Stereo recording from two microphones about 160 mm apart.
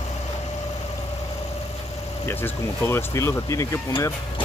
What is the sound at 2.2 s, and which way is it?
Speech, 15° left (ahead or behind).